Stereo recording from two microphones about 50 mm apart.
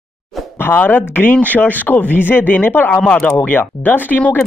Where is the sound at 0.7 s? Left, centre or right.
Left.